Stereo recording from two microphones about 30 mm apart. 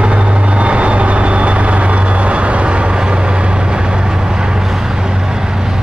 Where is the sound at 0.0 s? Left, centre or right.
Right.